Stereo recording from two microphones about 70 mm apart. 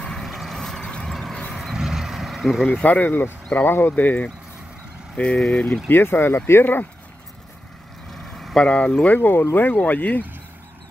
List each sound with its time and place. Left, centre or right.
0.0 s vehicle: centre
1.6 s vehicle: centre
2.7 s speech: left
5.9 s speech: left
8.1 s vehicle: centre
8.6 s speech: centre